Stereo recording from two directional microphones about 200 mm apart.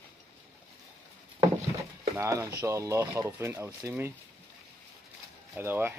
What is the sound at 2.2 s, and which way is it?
Speech, 15° right (ahead or behind).